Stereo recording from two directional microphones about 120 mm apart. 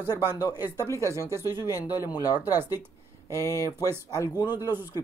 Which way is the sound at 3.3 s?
25° left (ahead or behind).